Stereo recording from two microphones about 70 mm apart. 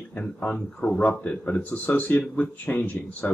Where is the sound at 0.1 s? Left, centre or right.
Centre.